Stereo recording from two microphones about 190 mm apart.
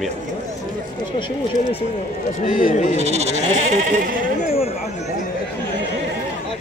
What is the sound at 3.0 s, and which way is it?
Sheep, 35° right (ahead or behind).